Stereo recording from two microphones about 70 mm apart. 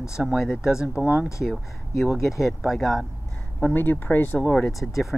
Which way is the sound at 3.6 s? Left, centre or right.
Left.